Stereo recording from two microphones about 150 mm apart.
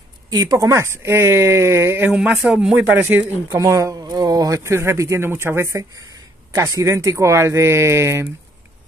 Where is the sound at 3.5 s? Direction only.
25° right (ahead or behind).